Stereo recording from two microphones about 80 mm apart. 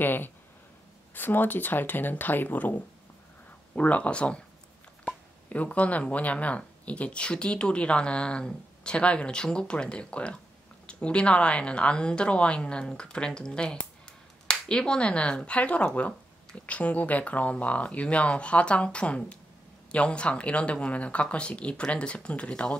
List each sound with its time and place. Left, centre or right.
0.0 s speech: left